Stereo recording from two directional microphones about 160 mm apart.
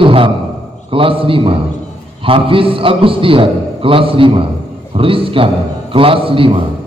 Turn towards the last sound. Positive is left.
turn(degrees=-35)  # may be behind; listen again after turning